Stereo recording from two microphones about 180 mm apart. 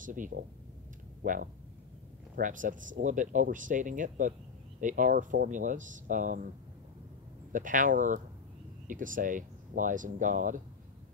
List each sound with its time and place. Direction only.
0.0 s speech: 45° right (ahead or behind)
7.5 s speech: 45° right (ahead or behind)